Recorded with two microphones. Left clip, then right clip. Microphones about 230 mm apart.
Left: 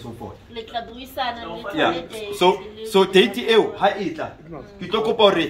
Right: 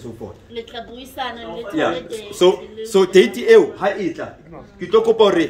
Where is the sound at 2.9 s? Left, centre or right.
Right.